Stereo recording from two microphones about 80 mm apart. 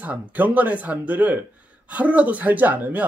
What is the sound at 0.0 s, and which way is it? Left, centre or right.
Speech, right.